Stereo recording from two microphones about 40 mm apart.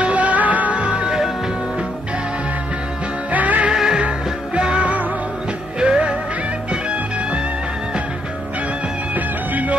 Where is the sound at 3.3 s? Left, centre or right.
Right.